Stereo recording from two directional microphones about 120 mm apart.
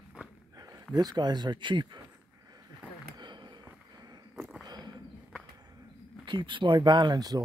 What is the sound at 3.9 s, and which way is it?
Walk, 35° right (ahead or behind).